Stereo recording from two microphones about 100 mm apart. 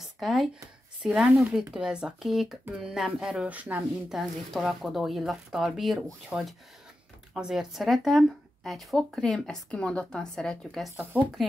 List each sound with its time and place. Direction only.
0.2 s speech: centre (ahead or behind)
4.1 s speech: centre (ahead or behind)
11.1 s speech: 15° right (ahead or behind)